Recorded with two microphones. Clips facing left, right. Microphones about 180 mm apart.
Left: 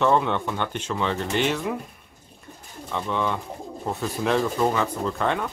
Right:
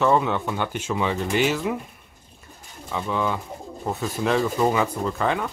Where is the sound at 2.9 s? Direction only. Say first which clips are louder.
Right 1 dB; 5° right (ahead or behind).